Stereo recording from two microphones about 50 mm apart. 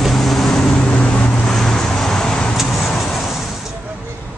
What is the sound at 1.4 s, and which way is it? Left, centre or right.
Vehicle, centre.